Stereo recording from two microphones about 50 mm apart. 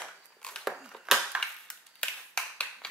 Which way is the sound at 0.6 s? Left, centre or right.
Centre.